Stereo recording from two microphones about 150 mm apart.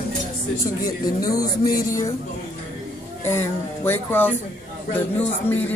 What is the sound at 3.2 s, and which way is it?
Speech, 15° left (ahead or behind).